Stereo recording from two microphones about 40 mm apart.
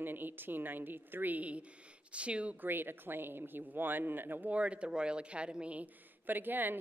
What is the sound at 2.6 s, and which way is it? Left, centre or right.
Speech, right.